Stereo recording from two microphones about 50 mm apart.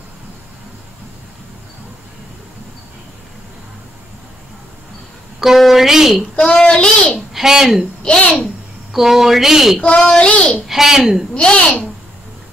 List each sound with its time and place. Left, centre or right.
5.4 s speech: centre
6.3 s a child's voice: centre
7.3 s a woman's voice: centre
8.9 s speech: centre
10.0 s a child's voice: centre
10.7 s a woman's voice: centre
11.3 s a child's voice: left